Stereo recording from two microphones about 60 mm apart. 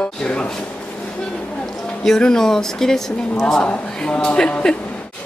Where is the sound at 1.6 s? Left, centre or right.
Centre.